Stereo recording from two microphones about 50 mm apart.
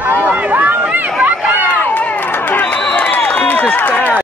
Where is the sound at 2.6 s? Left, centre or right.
Left.